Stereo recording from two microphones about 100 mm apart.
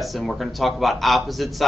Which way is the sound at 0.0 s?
Centre (ahead or behind).